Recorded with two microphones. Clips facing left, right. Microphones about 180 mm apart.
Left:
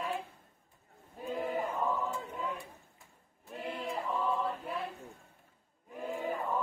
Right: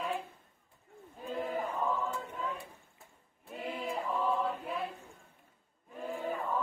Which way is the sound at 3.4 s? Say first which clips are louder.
Right 1 dB; 5° right (ahead or behind).